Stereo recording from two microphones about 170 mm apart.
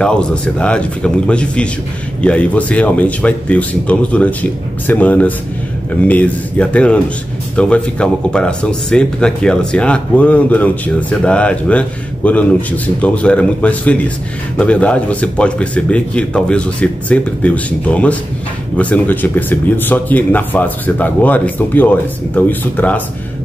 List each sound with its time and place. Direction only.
0.0 s speech: 5° left (ahead or behind)